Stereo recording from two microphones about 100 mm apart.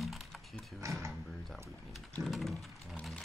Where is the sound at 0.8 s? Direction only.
30° right (ahead or behind).